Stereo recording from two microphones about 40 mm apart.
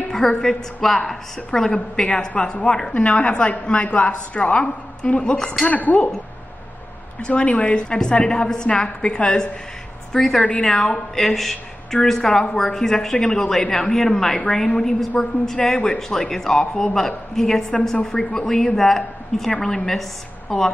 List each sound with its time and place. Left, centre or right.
0.1 s a woman's voice: centre
1.7 s a man's voice: left
2.9 s a woman's voice: left
5.7 s a woman's voice: left
7.2 s a woman's voice: left; by 20.7 s centre